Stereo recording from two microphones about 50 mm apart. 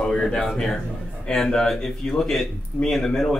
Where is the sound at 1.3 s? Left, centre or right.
Centre.